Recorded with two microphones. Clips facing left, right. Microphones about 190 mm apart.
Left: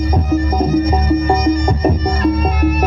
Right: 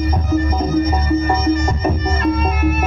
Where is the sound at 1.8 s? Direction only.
35° left (ahead or behind).